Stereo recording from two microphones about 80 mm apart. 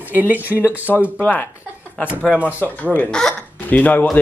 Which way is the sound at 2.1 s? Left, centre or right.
Centre.